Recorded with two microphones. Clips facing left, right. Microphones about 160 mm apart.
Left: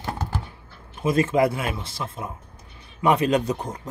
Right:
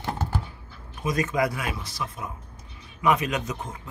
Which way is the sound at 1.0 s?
25° left (ahead or behind).